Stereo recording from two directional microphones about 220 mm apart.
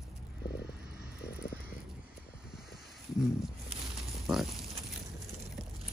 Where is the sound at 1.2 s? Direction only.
45° left (ahead or behind).